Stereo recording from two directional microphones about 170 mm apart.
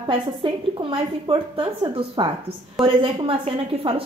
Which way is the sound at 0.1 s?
30° right (ahead or behind).